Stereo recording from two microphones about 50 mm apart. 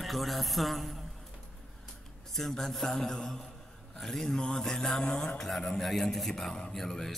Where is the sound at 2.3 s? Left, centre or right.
Centre.